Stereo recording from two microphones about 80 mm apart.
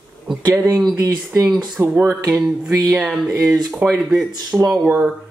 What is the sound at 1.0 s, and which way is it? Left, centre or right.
Speech, right.